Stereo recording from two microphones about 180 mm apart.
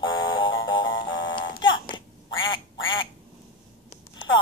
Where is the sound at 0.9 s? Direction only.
25° left (ahead or behind).